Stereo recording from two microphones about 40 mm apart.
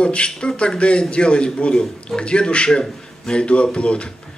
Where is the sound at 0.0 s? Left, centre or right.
Left.